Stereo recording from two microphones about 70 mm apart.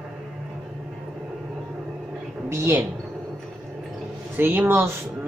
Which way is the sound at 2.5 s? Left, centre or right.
Right.